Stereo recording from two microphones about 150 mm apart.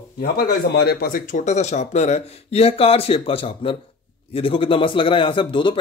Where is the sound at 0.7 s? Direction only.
85° left.